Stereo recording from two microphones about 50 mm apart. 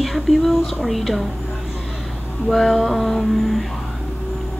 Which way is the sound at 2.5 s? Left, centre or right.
Centre.